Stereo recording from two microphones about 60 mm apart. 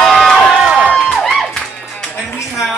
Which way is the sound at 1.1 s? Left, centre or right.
Centre.